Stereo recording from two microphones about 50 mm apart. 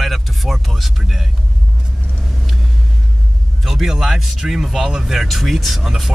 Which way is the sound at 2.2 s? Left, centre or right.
Centre.